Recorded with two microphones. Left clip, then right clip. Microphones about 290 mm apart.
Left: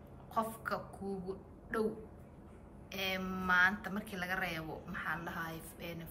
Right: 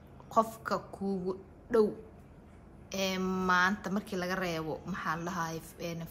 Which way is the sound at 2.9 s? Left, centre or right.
Centre.